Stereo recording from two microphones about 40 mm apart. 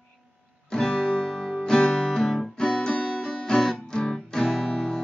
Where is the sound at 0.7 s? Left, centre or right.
Centre.